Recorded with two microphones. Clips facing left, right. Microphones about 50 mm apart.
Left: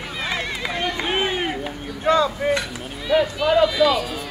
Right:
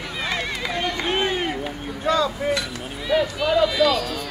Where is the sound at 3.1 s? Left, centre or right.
Centre.